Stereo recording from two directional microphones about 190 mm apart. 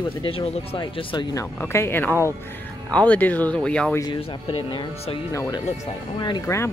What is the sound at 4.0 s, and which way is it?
Speech, 25° left (ahead or behind).